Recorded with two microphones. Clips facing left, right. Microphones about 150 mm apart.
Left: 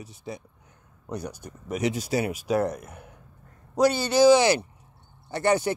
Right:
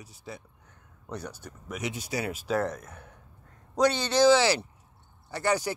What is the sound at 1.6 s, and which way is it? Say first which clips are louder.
Speech: left 8 dB; 35° left (ahead or behind).